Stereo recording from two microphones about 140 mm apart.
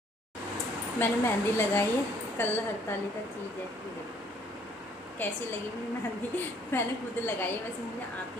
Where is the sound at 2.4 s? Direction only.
15° left (ahead or behind).